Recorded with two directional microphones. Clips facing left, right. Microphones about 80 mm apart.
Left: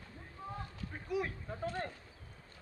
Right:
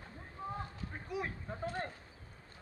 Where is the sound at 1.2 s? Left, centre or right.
Centre.